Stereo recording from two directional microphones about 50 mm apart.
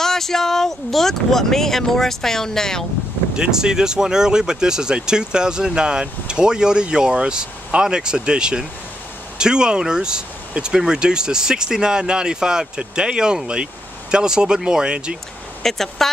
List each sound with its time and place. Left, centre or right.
0.0 s speech: centre
3.3 s speech: centre
15.6 s speech: centre